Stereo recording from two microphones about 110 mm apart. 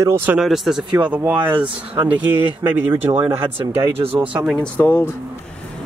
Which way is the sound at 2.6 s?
20° right (ahead or behind).